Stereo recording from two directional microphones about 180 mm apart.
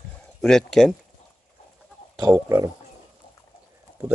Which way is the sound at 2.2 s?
15° right (ahead or behind).